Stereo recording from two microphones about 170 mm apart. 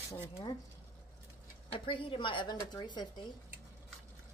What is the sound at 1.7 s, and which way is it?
A woman's voice, 30° left (ahead or behind).